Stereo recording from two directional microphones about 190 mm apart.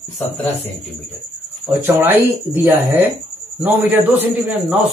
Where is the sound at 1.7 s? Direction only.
10° right (ahead or behind).